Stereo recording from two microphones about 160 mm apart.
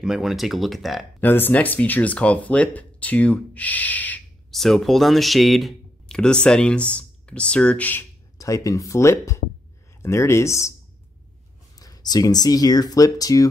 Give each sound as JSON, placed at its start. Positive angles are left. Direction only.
{"t": 0.0, "sound": "speech", "side_deg": 0}
{"t": 1.2, "sound": "speech", "side_deg": 10}
{"t": 8.4, "sound": "speech", "side_deg": 20}
{"t": 11.8, "sound": "speech", "side_deg": 25}